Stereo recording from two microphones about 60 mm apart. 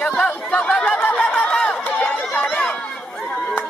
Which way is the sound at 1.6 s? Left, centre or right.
Centre.